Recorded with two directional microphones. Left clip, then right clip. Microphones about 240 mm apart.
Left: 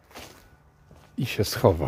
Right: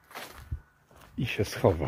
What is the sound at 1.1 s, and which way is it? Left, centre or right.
Speech, left.